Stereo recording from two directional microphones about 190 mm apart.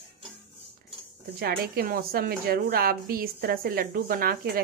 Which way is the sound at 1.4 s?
50° right (ahead or behind).